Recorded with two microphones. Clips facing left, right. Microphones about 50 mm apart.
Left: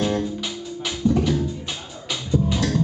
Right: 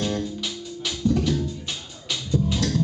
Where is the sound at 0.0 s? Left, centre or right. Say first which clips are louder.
Left 4 dB; centre.